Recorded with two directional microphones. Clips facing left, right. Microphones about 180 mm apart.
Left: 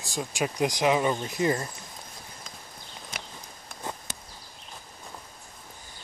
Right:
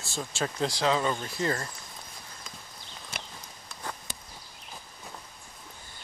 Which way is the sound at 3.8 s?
20° left (ahead or behind).